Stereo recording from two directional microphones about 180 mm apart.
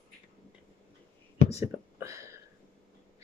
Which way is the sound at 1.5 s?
15° right (ahead or behind).